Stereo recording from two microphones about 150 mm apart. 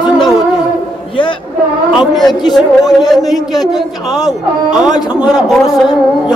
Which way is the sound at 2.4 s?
30° left (ahead or behind).